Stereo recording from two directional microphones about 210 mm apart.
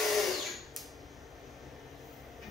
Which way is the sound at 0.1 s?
Centre (ahead or behind).